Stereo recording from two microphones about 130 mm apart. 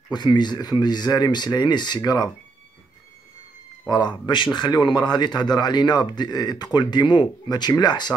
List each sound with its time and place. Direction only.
0.1 s a man's voice: 35° left (ahead or behind)
3.9 s a man's voice: 35° left (ahead or behind)